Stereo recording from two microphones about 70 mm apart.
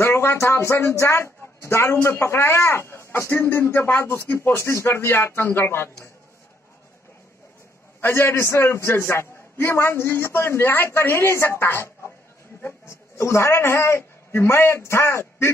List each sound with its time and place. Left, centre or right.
0.0 s speech: left
8.0 s a man's voice: left